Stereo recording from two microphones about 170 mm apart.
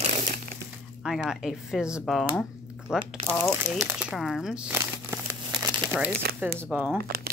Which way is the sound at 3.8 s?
5° right (ahead or behind).